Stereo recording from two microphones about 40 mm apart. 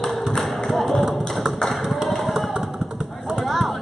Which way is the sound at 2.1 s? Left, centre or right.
Centre.